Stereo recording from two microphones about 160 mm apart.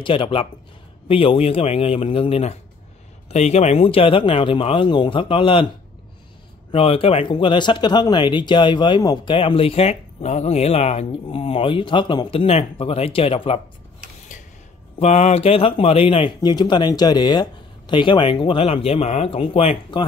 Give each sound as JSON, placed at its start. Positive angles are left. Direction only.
{"t": 0.0, "sound": "speech", "side_deg": 30}
{"t": 6.7, "sound": "speech", "side_deg": 35}
{"t": 15.0, "sound": "speech", "side_deg": 45}